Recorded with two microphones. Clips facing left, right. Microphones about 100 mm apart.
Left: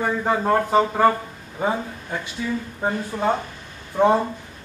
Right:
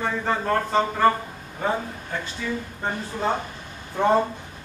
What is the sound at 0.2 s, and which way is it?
Speech, 15° left (ahead or behind).